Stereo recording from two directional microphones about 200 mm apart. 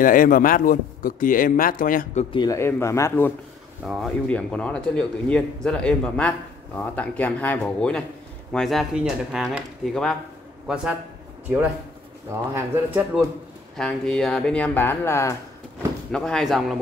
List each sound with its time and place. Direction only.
0.0 s speech: 45° left (ahead or behind)
2.3 s speech: 15° left (ahead or behind)
3.8 s speech: centre (ahead or behind)
12.3 s speech: 10° right (ahead or behind)
13.7 s speech: 5° left (ahead or behind)
16.1 s speech: 5° left (ahead or behind)